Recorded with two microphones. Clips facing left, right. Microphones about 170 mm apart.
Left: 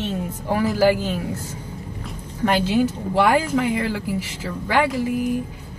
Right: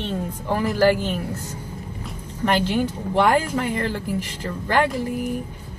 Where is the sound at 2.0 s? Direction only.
10° left (ahead or behind).